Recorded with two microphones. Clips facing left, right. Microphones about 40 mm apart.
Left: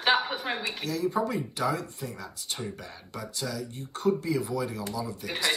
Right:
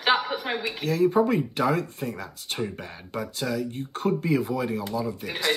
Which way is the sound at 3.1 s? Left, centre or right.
Right.